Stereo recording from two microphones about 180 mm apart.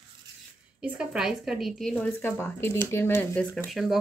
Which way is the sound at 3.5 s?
Centre (ahead or behind).